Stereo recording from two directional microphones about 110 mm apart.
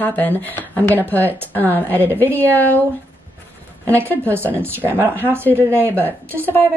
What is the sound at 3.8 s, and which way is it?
A woman's voice, 25° right (ahead or behind).